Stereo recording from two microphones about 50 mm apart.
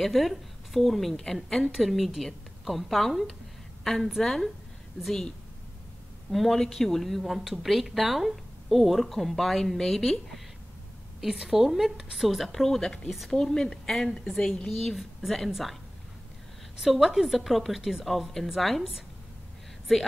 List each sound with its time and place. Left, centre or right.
0.0 s a woman's voice: centre
6.3 s speech: centre
11.1 s speech: centre
16.8 s speech: centre